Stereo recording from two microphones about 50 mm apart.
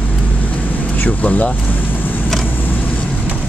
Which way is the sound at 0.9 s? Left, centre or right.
Left.